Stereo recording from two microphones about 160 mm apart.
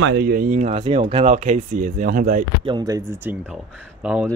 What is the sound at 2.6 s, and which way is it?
Speech, 25° right (ahead or behind).